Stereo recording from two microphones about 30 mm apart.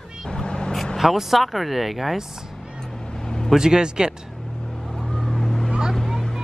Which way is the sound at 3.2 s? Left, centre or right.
Centre.